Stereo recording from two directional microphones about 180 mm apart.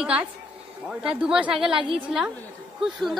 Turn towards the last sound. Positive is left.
turn(degrees=0)  # may be behind; listen again after turning